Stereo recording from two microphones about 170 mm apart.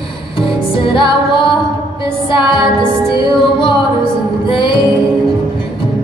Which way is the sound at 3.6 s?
30° left (ahead or behind).